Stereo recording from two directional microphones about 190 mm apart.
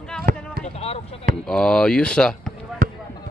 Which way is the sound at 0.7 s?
30° left (ahead or behind).